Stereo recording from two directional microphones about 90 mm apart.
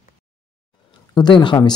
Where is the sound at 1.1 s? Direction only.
55° left (ahead or behind).